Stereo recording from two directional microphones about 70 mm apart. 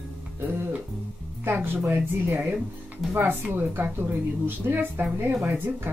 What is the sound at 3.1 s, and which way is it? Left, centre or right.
Speech, right.